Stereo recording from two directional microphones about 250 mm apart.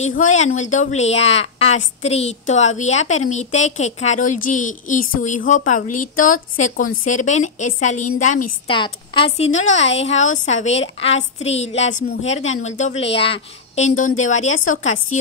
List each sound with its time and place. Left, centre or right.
0.0 s a woman's voice: left